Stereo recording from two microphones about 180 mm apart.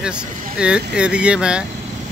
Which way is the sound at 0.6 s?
5° right (ahead or behind).